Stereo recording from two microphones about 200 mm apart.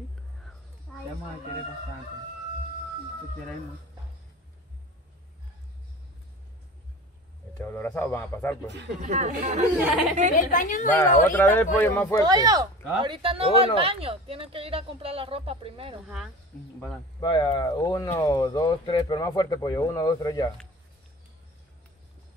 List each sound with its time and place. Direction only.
0.9 s a sound: 5° left (ahead or behind)
7.5 s a man's voice: 10° left (ahead or behind)
9.0 s speech: 35° right (ahead or behind)
9.8 s speech: 10° right (ahead or behind)
10.3 s a woman's voice: 40° left (ahead or behind)
11.2 s a man's voice: 10° left (ahead or behind)
12.2 s speech: 20° right (ahead or behind)
17.2 s speech: 20° left (ahead or behind)